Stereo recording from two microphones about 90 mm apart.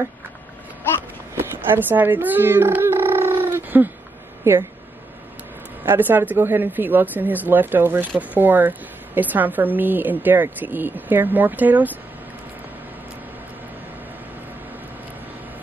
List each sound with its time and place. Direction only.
1.3 s roar: 25° right (ahead or behind)
4.4 s a woman's voice: 25° right (ahead or behind)
5.9 s a woman's voice: 20° right (ahead or behind)